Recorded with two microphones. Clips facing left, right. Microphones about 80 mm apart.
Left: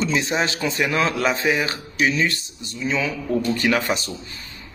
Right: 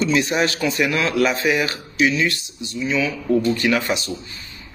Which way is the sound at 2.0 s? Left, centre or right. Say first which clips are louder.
Right 2 dB; left.